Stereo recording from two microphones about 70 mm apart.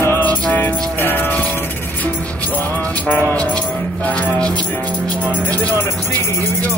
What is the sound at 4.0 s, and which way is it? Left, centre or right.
Music, centre.